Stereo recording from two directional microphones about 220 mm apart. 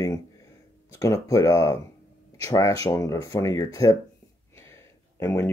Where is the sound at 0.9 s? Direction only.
15° left (ahead or behind).